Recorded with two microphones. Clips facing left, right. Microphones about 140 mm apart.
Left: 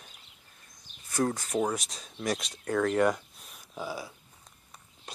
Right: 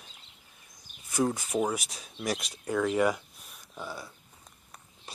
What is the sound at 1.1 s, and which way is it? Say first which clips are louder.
Speech: right 1 dB; 10° right (ahead or behind).